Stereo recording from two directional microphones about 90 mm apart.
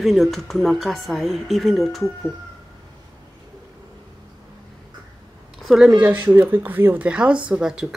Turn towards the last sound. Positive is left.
turn(degrees=-5)  # may be behind; listen again after turning